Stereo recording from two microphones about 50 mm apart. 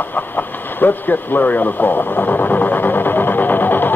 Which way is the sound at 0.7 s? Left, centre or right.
Left.